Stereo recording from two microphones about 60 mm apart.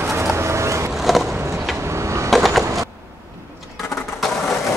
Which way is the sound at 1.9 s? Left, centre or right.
Right.